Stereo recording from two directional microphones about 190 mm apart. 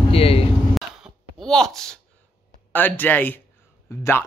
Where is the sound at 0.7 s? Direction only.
Centre (ahead or behind).